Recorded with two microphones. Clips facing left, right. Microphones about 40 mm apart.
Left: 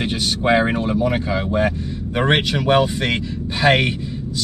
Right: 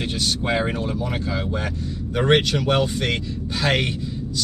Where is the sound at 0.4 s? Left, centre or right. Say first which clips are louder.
Left 9 dB; left.